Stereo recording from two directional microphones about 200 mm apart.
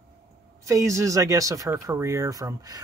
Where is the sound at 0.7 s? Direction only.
15° right (ahead or behind).